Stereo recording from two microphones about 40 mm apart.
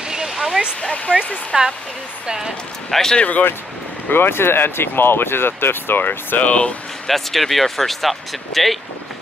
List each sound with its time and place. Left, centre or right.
0.3 s a sound: centre
0.7 s speech: left
1.5 s speech: centre
2.9 s speech: centre
4.1 s speech: left
6.4 s speech: left
7.1 s speech: centre